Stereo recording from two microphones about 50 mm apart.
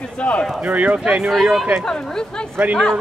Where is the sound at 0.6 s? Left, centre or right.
Right.